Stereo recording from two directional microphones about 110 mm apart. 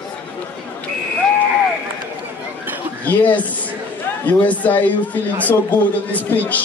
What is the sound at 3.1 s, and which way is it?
A man's voice, 15° left (ahead or behind).